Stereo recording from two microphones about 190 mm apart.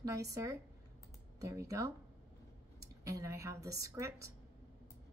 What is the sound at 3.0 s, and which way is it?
Speech, 15° right (ahead or behind).